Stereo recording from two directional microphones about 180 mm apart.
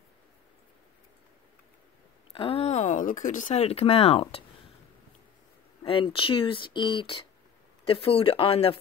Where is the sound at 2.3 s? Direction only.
30° left (ahead or behind).